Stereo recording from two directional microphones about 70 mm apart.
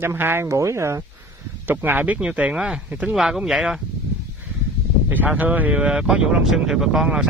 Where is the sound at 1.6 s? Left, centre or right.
Right.